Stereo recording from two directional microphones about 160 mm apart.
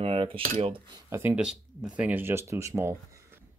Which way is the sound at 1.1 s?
10° right (ahead or behind).